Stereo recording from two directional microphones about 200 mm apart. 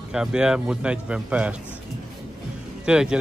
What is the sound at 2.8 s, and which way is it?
Speech, 5° right (ahead or behind).